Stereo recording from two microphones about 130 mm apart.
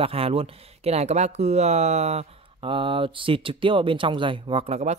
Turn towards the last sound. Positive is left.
turn(degrees=-55)  # may be behind; listen again after turning